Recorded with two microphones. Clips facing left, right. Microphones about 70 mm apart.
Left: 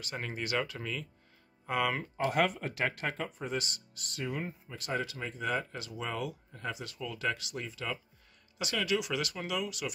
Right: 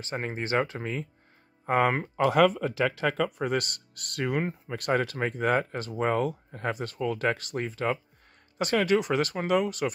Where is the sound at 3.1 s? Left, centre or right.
Right.